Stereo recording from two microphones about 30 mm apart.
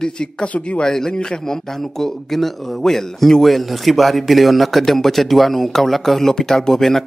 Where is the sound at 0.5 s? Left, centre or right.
Left.